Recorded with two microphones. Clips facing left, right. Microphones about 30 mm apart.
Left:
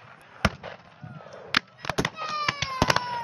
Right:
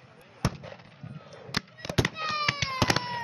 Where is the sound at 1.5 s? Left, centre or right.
Left.